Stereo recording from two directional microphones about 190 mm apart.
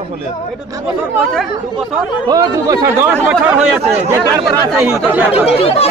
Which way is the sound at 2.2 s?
20° right (ahead or behind).